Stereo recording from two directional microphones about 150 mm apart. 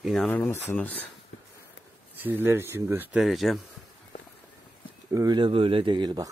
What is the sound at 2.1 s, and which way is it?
Speech, 10° right (ahead or behind).